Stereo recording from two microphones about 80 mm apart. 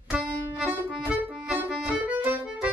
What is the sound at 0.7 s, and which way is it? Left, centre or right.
Accordion, right.